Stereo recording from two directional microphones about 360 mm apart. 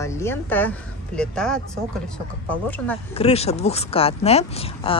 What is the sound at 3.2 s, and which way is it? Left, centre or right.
A woman's voice, centre.